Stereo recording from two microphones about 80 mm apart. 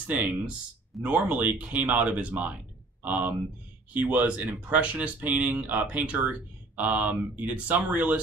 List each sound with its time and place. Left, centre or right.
0.0 s speech: centre